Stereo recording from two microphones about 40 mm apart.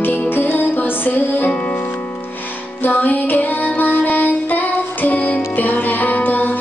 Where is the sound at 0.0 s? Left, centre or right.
Left.